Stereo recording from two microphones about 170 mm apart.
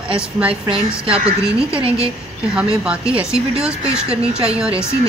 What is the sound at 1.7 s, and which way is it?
Speech, 30° right (ahead or behind).